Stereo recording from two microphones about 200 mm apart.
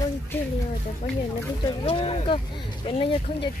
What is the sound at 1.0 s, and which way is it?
Speech, 35° left (ahead or behind).